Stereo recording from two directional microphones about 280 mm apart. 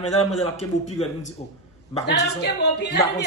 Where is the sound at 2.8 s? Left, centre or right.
Left.